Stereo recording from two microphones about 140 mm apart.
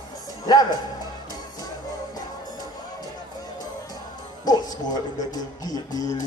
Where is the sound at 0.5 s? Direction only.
30° left (ahead or behind).